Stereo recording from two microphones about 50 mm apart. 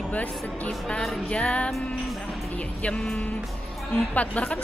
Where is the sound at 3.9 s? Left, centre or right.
Left.